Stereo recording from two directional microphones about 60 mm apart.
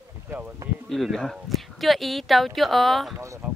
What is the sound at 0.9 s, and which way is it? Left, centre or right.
Speech, centre.